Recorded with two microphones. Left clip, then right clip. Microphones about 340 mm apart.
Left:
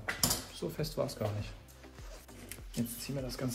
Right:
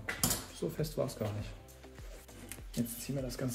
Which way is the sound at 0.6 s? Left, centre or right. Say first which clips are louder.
Right 3 dB; centre.